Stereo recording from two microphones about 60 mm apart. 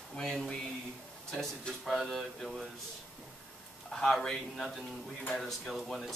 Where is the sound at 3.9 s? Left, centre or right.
Centre.